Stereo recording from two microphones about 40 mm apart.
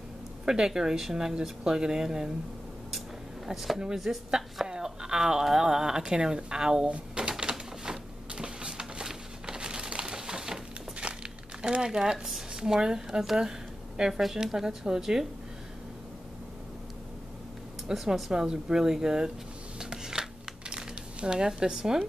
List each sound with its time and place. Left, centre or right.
0.5 s speech: centre
3.4 s speech: centre
7.2 s typewriter: right
11.8 s speech: right
17.8 s a woman's voice: centre
19.8 s a sound: centre
20.7 s speech: right